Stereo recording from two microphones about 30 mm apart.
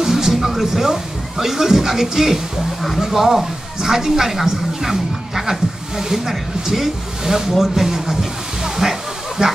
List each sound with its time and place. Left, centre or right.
0.0 s music: centre
1.4 s speech: centre
9.4 s speech: right